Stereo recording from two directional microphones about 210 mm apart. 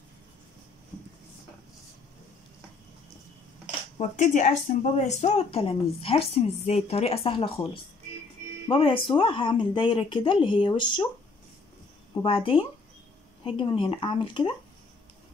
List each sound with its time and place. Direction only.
4.2 s a woman's voice: 35° left (ahead or behind)
12.1 s a woman's voice: 25° left (ahead or behind)